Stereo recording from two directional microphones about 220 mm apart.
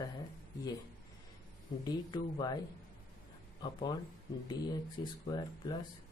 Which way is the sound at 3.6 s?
20° left (ahead or behind).